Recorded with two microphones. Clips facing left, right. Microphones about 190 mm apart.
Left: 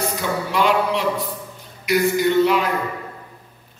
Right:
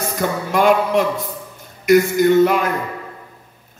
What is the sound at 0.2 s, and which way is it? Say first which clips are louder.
A man's voice: right 6 dB; 50° right (ahead or behind).